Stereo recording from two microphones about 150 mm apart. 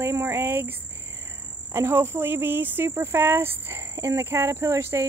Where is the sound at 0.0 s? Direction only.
20° right (ahead or behind).